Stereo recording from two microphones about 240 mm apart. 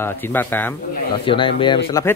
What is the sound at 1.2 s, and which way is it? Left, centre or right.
Speech, left.